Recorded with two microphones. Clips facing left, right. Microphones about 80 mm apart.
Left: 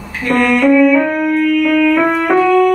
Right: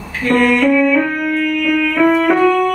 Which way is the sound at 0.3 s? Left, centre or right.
Centre.